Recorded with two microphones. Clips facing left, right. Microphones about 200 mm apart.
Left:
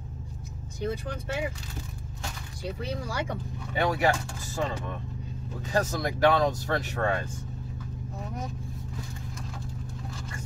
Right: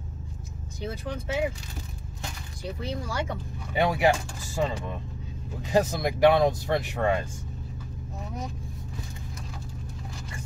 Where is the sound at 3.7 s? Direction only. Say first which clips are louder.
Right 2 dB; 15° right (ahead or behind).